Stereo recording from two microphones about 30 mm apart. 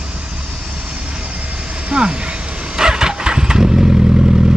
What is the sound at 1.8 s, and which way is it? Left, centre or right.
Vehicle, right.